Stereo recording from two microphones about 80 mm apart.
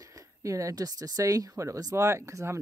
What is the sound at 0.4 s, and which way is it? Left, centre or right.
Speech, right.